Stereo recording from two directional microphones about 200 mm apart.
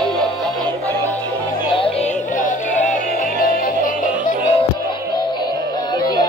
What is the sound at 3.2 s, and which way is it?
Music, 45° left (ahead or behind).